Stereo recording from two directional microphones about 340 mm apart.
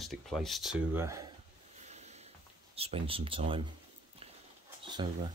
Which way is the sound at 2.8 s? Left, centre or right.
Centre.